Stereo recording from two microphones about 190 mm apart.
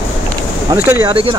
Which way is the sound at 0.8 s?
10° right (ahead or behind).